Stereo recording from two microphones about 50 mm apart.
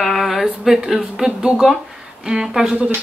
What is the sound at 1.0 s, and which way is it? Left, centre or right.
Speech, centre.